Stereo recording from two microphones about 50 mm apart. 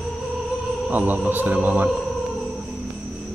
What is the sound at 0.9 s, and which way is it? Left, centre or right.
Speech, right.